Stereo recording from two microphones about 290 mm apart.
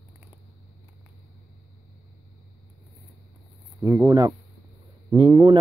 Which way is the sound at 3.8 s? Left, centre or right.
Centre.